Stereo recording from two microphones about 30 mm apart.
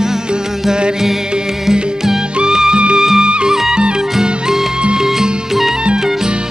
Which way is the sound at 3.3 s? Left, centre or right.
Right.